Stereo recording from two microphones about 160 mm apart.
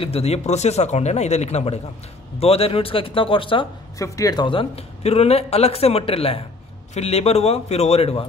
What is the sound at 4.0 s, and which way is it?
Speech, 20° left (ahead or behind).